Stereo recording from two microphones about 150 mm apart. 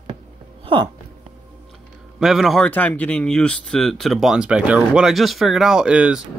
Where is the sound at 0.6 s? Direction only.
35° right (ahead or behind).